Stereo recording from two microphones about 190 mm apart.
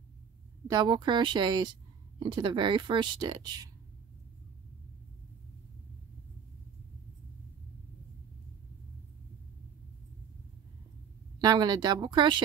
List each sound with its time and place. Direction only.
0.7 s speech: 20° right (ahead or behind)
11.4 s speech: 20° right (ahead or behind)